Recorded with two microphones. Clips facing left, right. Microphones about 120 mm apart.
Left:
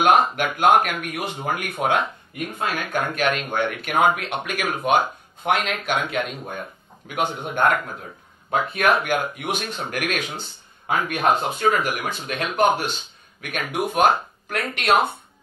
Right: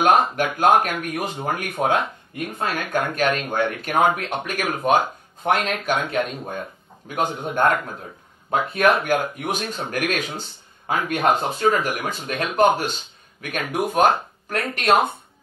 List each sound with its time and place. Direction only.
0.0 s speech: 40° right (ahead or behind)